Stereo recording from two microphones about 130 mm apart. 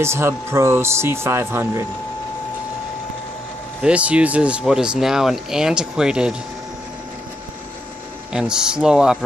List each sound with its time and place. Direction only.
0.0 s speech: 20° right (ahead or behind)
3.8 s speech: 10° right (ahead or behind)
8.3 s speech: 5° right (ahead or behind)